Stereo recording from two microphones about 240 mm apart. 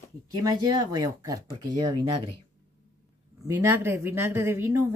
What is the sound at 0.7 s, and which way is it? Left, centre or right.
Speech, centre.